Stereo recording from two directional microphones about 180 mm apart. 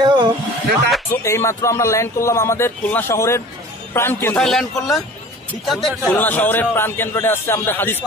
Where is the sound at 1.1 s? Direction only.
15° left (ahead or behind).